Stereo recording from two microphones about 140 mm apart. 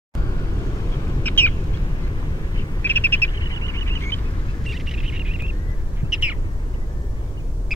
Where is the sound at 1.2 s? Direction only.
15° left (ahead or behind).